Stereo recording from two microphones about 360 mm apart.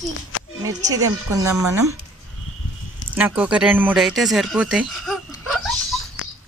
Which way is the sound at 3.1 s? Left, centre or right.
Centre.